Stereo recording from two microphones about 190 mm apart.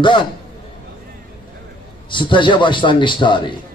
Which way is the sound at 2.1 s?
25° left (ahead or behind).